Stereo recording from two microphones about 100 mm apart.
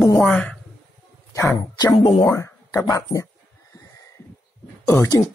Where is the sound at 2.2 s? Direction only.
30° left (ahead or behind).